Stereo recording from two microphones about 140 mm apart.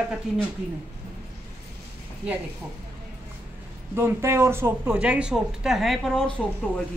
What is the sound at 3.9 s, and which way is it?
Speech, 20° right (ahead or behind).